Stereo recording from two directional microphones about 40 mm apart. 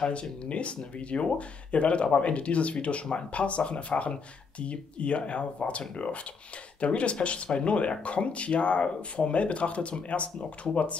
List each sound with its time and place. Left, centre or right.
0.1 s speech: left